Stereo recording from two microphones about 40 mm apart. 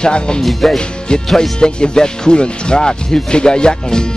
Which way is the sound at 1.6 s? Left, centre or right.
Centre.